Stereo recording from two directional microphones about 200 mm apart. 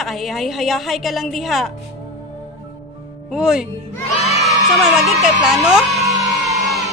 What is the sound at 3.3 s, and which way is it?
Speech, 5° right (ahead or behind).